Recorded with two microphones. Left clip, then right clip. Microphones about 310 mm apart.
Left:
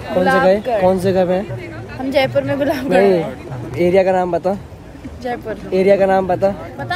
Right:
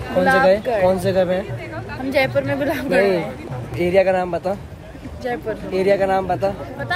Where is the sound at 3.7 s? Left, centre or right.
Centre.